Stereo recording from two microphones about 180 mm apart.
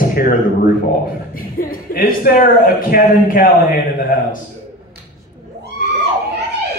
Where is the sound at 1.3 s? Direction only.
50° left (ahead or behind).